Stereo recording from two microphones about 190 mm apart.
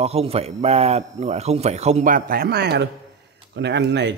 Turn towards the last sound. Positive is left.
turn(degrees=-65)  # may be behind; listen again after turning